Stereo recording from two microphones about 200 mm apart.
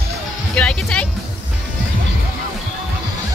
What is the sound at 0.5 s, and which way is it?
Music, 5° left (ahead or behind).